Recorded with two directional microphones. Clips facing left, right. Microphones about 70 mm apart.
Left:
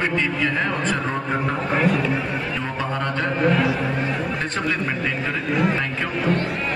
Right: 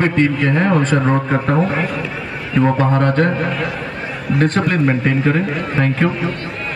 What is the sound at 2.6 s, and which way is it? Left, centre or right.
Speech, right.